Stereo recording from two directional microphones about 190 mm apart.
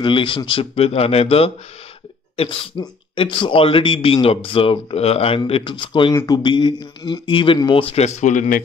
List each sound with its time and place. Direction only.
0.0 s speech: 25° left (ahead or behind)